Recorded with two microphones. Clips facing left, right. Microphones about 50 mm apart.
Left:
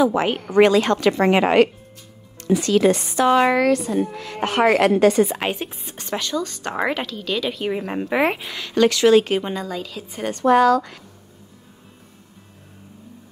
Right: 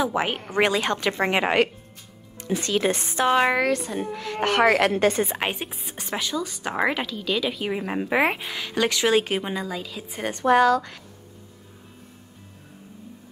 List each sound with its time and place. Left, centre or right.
0.1 s speech: centre
2.5 s speech: right
3.3 s speech: centre
4.0 s speech: right
4.7 s a woman's voice: left
5.0 s speech: right
5.4 s a woman's voice: centre
10.3 s speech: right